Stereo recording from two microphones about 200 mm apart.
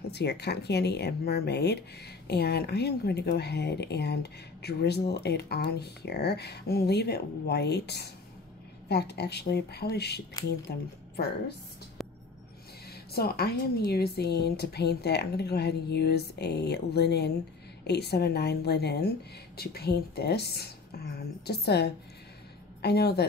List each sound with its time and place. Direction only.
0.1 s a woman's voice: 55° left (ahead or behind)
12.0 s music: centre (ahead or behind)
12.9 s a woman's voice: 50° left (ahead or behind)